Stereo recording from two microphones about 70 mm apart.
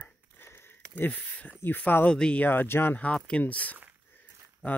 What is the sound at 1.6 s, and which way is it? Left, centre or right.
Speech, left.